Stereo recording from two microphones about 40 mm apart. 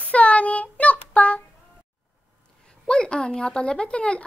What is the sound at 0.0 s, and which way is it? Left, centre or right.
Child singing, left.